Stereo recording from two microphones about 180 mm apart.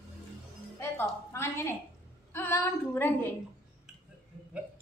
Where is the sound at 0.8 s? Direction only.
15° left (ahead or behind).